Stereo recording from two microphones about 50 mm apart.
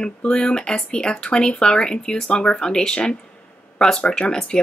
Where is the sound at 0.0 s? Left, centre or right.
Centre.